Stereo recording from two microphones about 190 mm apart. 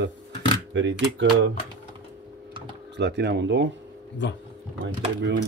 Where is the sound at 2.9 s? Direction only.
65° right (ahead or behind).